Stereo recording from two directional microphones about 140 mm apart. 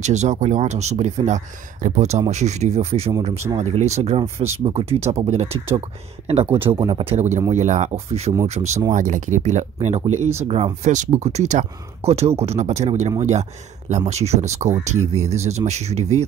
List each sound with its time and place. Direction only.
0.0 s speech: 55° right (ahead or behind); by 7.2 s 35° right (ahead or behind)
7.2 s speech: 55° right (ahead or behind)
8.9 s speech: 65° right (ahead or behind)